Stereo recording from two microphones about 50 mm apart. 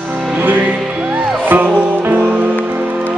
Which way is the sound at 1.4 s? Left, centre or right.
Right.